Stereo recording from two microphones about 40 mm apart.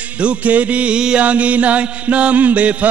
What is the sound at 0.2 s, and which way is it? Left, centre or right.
Music, right.